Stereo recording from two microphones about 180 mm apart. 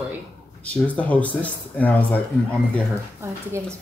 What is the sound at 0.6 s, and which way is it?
Speech, 10° left (ahead or behind).